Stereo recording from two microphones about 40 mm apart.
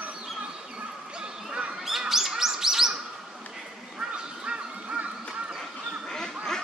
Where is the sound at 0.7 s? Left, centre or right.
Right.